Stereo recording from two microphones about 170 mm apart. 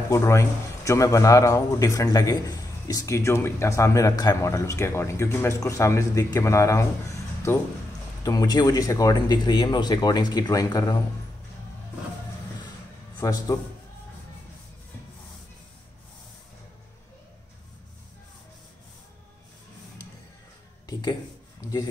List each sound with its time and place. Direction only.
0.1 s a man's voice: 15° left (ahead or behind)
8.2 s speech: 20° left (ahead or behind)
13.2 s speech: 20° left (ahead or behind)
20.8 s a sound: 25° left (ahead or behind)